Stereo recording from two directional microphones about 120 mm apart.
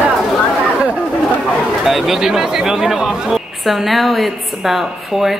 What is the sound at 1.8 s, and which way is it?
Speech, 5° right (ahead or behind).